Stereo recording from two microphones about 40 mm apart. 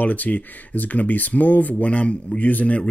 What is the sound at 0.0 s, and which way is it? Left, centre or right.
Speech, left.